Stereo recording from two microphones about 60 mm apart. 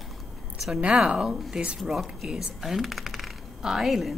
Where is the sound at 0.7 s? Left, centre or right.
Centre.